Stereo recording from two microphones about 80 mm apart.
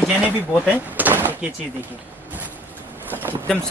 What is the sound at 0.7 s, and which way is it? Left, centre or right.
Door, right.